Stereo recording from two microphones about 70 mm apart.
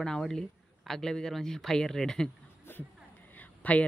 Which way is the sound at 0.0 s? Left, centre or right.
Centre.